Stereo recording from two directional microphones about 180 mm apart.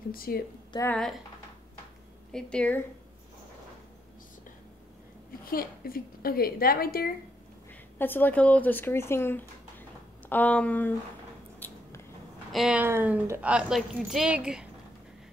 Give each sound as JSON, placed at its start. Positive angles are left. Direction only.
{"t": 0.1, "sound": "a woman's voice", "side_deg": 55}
{"t": 0.7, "sound": "a woman's voice", "side_deg": 20}
{"t": 2.3, "sound": "speech", "side_deg": 5}
{"t": 5.4, "sound": "a woman's voice", "side_deg": 55}
{"t": 8.0, "sound": "speech", "side_deg": 10}
{"t": 11.6, "sound": "squish", "side_deg": 10}
{"t": 12.5, "sound": "speech", "side_deg": -5}